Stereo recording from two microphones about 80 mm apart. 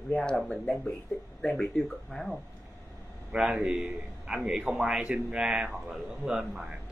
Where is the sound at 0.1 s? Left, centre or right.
Centre.